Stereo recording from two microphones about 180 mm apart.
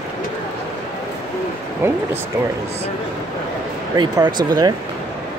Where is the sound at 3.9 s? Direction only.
25° right (ahead or behind).